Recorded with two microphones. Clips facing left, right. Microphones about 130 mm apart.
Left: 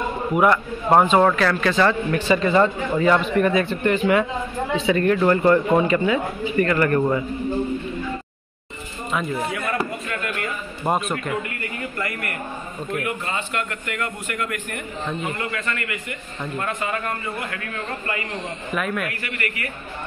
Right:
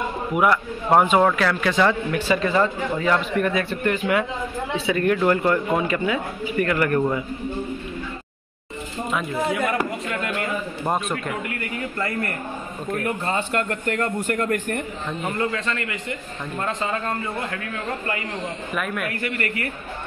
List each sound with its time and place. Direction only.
0.3 s a man's voice: 5° right (ahead or behind)
9.8 s speech: 20° right (ahead or behind)
10.9 s speech: centre (ahead or behind)
13.0 s a man's voice: 40° right (ahead or behind)
16.6 s a man's voice: 25° right (ahead or behind)
18.8 s speech: centre (ahead or behind)